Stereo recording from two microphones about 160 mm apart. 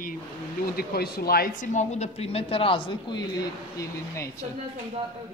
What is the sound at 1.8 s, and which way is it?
Speech, 45° left (ahead or behind).